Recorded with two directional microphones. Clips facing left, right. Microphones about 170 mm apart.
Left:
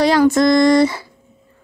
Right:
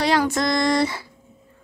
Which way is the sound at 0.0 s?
45° left (ahead or behind).